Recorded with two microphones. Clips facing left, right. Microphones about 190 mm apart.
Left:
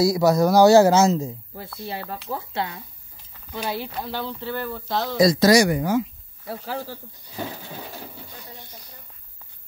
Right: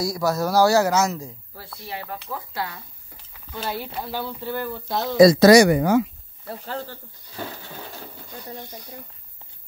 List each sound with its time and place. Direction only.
0.0 s speech: 20° left (ahead or behind)
3.7 s speech: 5° right (ahead or behind)
5.2 s speech: 60° right (ahead or behind)
6.4 s speech: 5° left (ahead or behind)